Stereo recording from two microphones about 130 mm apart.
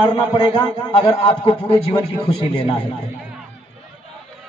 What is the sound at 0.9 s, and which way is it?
A man's voice, 40° left (ahead or behind).